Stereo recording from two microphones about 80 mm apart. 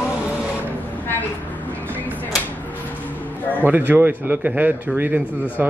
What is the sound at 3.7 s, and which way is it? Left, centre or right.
A man's voice, right.